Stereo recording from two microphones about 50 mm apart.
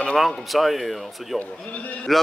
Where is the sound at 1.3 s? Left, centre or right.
Left.